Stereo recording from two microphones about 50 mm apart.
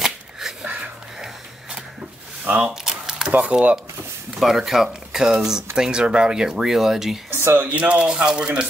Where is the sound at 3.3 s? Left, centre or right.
Right.